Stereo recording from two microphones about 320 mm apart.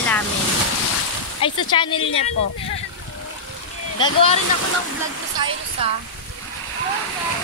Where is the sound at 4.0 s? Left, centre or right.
Centre.